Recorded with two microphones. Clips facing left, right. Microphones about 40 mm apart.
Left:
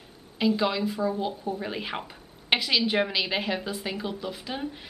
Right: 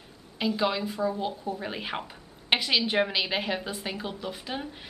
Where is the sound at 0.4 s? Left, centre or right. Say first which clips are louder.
Left 2 dB; centre.